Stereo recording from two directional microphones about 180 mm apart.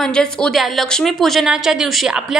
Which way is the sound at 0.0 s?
5° left (ahead or behind).